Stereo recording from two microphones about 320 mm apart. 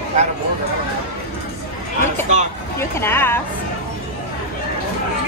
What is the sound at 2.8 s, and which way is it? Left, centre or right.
Speech, centre.